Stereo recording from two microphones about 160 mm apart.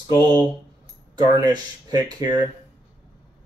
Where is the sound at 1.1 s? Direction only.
25° right (ahead or behind).